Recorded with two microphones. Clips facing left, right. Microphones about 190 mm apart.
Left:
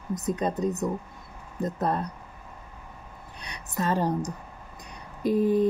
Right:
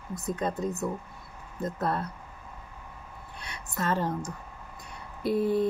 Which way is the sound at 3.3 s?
15° left (ahead or behind).